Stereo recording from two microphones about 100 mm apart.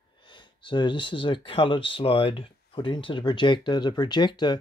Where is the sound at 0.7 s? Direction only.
55° left (ahead or behind).